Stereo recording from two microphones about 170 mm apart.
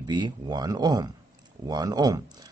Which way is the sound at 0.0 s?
25° right (ahead or behind).